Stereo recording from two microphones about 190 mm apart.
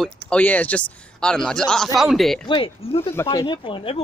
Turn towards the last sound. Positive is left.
turn(degrees=30)  # may be behind; listen again after turning